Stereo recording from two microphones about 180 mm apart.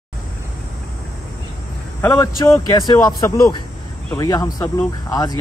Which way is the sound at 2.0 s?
15° left (ahead or behind).